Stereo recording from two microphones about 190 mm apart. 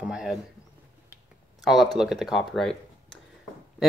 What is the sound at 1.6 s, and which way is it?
Speech, centre (ahead or behind).